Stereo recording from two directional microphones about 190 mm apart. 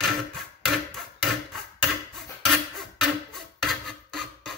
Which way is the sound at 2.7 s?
Centre (ahead or behind).